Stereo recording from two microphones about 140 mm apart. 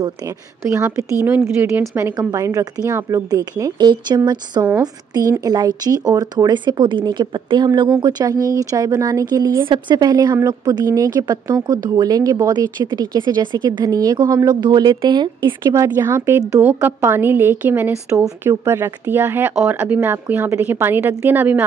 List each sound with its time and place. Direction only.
0.7 s a woman's voice: 20° right (ahead or behind)
15.6 s a woman's voice: 20° right (ahead or behind)